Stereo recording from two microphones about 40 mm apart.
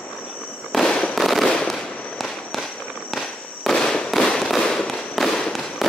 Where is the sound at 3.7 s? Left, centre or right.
Centre.